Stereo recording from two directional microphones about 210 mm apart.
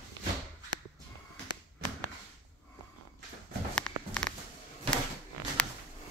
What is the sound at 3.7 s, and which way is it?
Walk, 5° left (ahead or behind).